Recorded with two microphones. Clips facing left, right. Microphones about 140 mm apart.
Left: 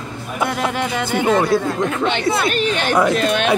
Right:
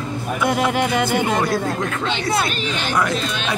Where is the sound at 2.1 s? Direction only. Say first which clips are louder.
Left 3 dB; 55° left (ahead or behind).